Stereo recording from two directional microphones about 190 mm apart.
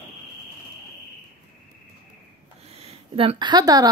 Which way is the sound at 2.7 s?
30° right (ahead or behind).